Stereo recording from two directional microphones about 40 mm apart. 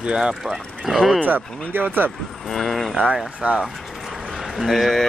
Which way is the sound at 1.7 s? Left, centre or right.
Right.